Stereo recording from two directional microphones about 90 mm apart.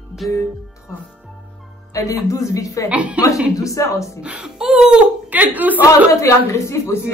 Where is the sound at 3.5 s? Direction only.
35° left (ahead or behind).